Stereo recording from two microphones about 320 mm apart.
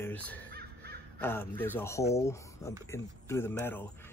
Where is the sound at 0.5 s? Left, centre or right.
Right.